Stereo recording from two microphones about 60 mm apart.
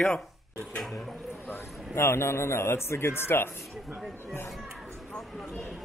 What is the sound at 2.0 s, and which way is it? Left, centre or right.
A man's voice, left.